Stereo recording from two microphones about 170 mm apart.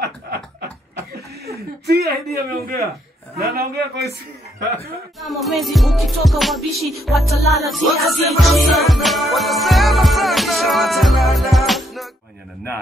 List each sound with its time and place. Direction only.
0.0 s a sound: 70° right (ahead or behind)
1.9 s a man's voice: 70° right (ahead or behind)
5.2 s music: centre (ahead or behind)